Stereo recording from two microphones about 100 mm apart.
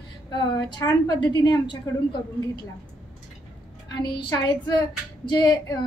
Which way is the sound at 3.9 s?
50° left (ahead or behind).